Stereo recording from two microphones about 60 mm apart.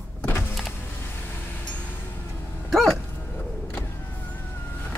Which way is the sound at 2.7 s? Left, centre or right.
Centre.